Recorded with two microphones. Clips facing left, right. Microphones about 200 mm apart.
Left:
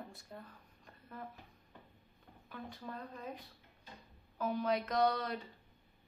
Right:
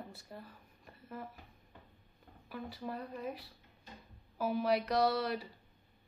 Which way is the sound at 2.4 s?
5° right (ahead or behind).